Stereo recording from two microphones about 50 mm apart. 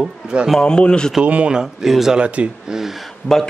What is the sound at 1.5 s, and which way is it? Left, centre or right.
Speech, centre.